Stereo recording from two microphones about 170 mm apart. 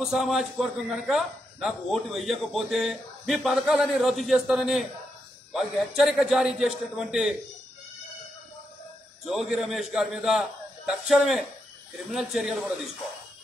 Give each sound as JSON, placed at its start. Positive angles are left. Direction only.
{"t": 0.0, "sound": "a man's voice", "side_deg": 0}
{"t": 9.2, "sound": "a man's voice", "side_deg": 0}